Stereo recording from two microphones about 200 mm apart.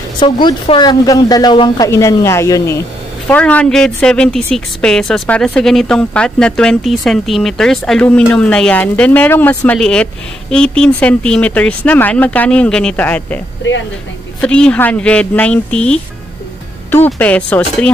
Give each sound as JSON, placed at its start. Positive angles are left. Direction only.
{"t": 0.2, "sound": "speech", "side_deg": 20}
{"t": 13.6, "sound": "speech", "side_deg": 60}
{"t": 14.4, "sound": "speech", "side_deg": 5}